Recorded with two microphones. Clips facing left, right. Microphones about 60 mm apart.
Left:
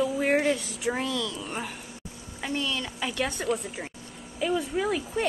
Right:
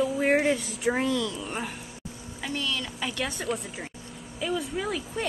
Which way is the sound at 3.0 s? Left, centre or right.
Centre.